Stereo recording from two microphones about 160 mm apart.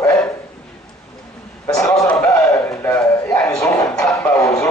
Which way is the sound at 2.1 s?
15° left (ahead or behind).